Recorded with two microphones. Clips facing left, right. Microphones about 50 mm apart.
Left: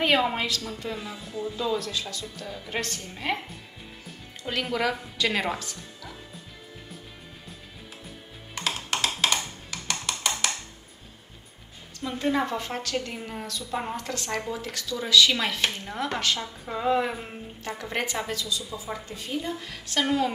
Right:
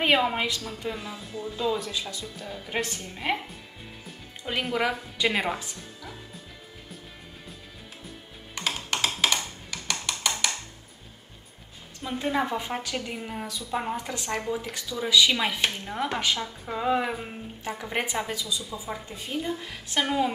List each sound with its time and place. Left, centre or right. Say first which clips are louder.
0.0 s a woman's voice: even; centre
8.5 s music: even; centre
12.0 s a woman's voice: left 1 dB; centre
17.6 s speech: even; centre